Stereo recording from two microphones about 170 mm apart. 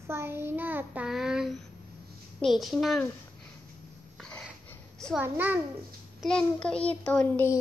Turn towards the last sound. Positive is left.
turn(degrees=15)  # may be behind; listen again after turning